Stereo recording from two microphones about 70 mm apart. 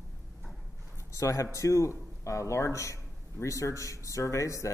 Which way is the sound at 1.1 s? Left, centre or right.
Left.